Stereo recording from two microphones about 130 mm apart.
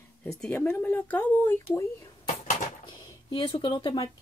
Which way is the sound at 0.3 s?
5° left (ahead or behind).